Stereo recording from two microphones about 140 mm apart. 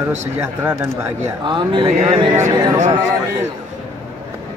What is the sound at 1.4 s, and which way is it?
Speech, 35° right (ahead or behind).